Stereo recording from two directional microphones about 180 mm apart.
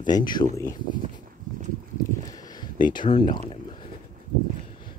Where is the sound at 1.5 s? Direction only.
50° right (ahead or behind).